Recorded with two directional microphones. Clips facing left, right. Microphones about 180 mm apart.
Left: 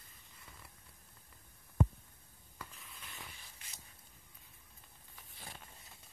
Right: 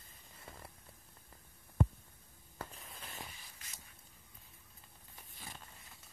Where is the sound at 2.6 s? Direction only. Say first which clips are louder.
Right 5 dB; 45° right (ahead or behind).